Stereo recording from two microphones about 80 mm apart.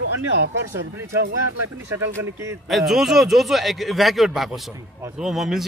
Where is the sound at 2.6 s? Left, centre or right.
Centre.